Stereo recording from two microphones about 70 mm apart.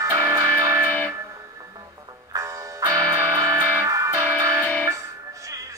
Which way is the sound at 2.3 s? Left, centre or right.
Right.